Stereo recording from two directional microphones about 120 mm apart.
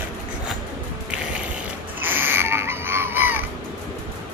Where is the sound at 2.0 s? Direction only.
15° right (ahead or behind).